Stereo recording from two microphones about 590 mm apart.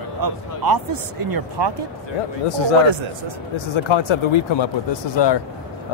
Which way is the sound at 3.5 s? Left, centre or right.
Left.